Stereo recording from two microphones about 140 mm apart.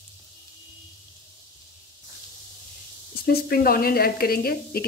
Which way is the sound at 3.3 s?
90° left.